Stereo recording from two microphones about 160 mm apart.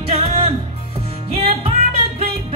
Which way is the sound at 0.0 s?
40° right (ahead or behind).